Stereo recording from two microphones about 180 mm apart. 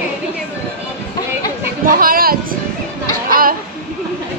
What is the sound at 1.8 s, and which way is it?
Speech, 50° right (ahead or behind).